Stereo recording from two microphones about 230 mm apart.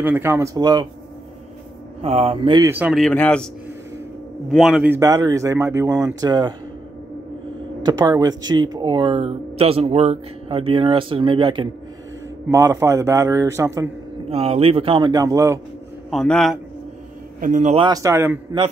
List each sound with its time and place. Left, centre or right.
0.0 s speech: centre
2.0 s speech: right
2.7 s speech: centre
4.5 s speech: centre
7.8 s speech: centre
14.3 s speech: right
16.1 s speech: centre
17.4 s speech: right; by 18.6 s centre